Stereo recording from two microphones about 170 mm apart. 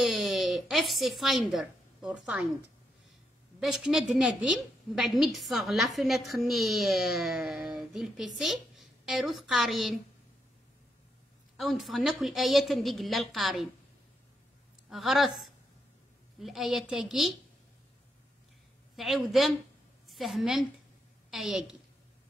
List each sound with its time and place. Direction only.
0.0 s a sound: centre (ahead or behind)
3.5 s a woman's voice: 5° right (ahead or behind)
11.5 s a woman's voice: centre (ahead or behind)
14.9 s a woman's voice: centre (ahead or behind)
18.9 s a woman's voice: centre (ahead or behind)